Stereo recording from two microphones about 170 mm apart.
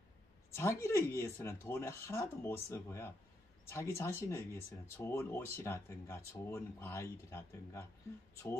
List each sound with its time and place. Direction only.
0.5 s speech: 15° left (ahead or behind)